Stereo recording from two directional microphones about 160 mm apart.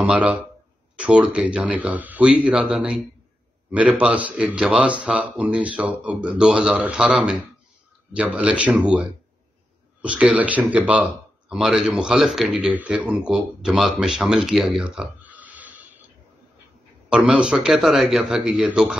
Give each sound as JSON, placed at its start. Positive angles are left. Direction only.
{"t": 0.0, "sound": "a man's voice", "side_deg": -5}
{"t": 17.1, "sound": "a man's voice", "side_deg": -5}